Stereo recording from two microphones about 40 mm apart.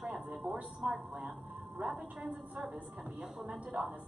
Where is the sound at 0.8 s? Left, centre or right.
Centre.